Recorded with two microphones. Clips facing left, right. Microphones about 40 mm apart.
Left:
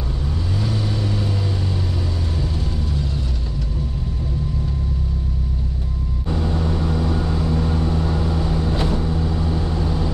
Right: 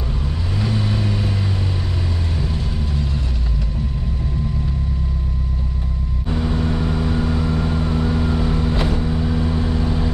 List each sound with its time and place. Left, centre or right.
6.3 s vehicle: right